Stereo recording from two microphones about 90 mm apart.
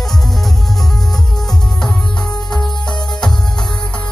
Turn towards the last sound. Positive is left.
turn(degrees=5)  # may be behind; listen again after turning